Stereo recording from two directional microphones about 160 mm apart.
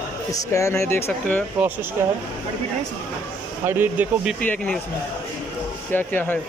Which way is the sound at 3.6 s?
10° right (ahead or behind).